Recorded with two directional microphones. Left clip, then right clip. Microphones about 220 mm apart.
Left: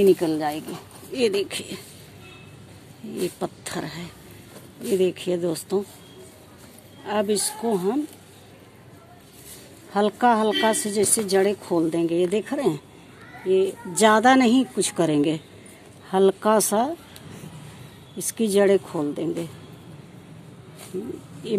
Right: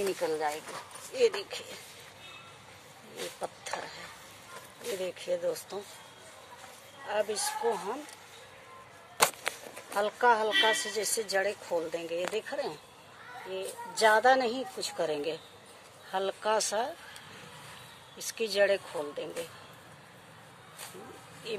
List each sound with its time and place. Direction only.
0.2 s a woman's voice: 40° left (ahead or behind)
3.3 s a woman's voice: 45° left (ahead or behind)
5.0 s a woman's voice: 45° left (ahead or behind)
7.1 s a woman's voice: 45° left (ahead or behind)
9.9 s a woman's voice: 45° left (ahead or behind)
18.1 s speech: 40° left (ahead or behind)